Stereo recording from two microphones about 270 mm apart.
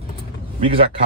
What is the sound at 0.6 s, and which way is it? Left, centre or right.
Speech, right.